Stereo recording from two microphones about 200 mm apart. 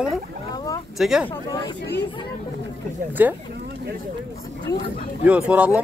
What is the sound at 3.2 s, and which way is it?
Speech, 10° right (ahead or behind).